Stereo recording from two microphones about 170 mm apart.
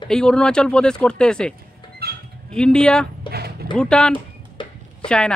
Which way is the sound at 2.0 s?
70° right (ahead or behind).